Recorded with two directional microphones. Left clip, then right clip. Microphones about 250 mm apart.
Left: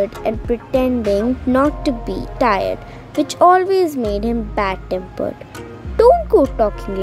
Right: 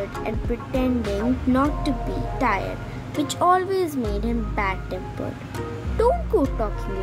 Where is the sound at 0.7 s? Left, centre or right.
Left.